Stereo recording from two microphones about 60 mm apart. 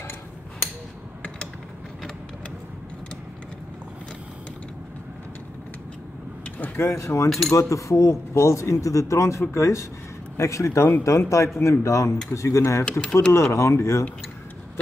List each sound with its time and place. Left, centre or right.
6.8 s speech: left
7.2 s speech: centre
7.5 s speech: left